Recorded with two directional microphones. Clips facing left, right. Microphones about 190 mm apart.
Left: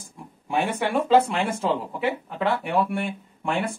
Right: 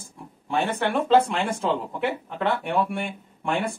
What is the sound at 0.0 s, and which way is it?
Speech, 10° left (ahead or behind).